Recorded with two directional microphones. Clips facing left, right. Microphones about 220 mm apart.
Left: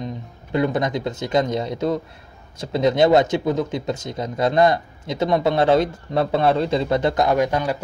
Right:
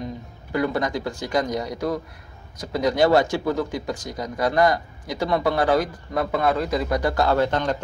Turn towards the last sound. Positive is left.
turn(degrees=10)  # may be behind; listen again after turning